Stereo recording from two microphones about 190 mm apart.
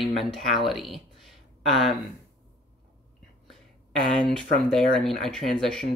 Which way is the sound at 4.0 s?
5° left (ahead or behind).